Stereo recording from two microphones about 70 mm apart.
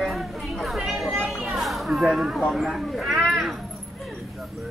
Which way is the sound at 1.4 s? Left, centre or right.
Centre.